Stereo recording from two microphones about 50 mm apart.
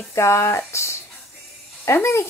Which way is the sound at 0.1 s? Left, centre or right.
Left.